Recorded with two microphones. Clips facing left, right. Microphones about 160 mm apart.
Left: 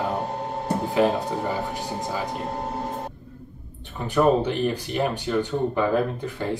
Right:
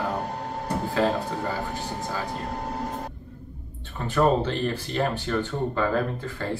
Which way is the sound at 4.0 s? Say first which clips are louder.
Left 2 dB; 15° left (ahead or behind).